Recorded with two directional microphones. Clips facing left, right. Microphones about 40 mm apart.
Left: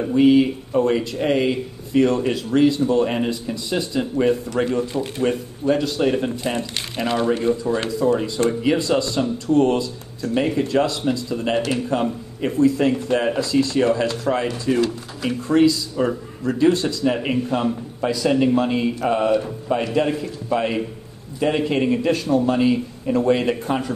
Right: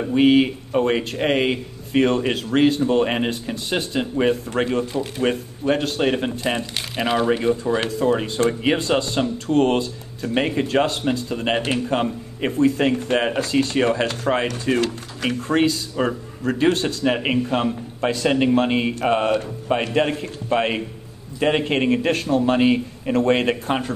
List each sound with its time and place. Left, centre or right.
0.1 s speech: right
7.0 s speech: centre
7.2 s a man's voice: right